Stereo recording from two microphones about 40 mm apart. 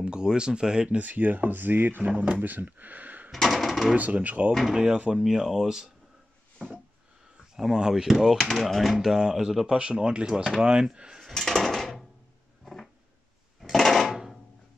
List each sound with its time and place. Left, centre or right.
0.0 s speech: right
0.8 s speech: right
2.0 s speech: right
3.3 s a sound: centre
3.9 s speech: right
4.5 s speech: centre
5.1 s speech: centre
7.5 s speech: centre
9.0 s speech: centre
11.3 s a sound: centre
14.1 s music: centre